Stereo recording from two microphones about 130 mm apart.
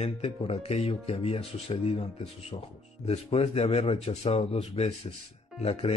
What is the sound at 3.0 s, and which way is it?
Speech, 50° left (ahead or behind).